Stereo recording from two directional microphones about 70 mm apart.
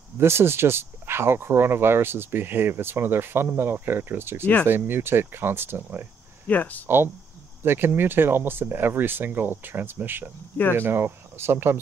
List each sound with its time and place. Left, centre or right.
0.2 s speech: right
6.4 s speech: left
7.6 s speech: right